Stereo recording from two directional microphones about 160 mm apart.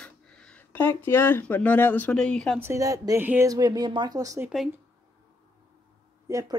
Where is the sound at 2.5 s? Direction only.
15° right (ahead or behind).